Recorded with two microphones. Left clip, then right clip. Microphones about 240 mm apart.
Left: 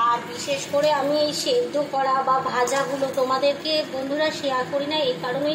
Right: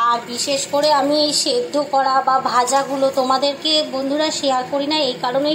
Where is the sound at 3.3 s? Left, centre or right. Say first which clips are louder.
Right 4 dB; centre.